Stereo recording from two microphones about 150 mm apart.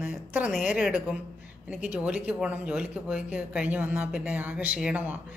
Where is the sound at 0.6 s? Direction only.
10° right (ahead or behind).